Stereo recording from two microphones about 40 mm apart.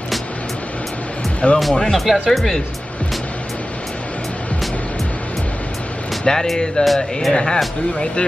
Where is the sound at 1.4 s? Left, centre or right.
Left.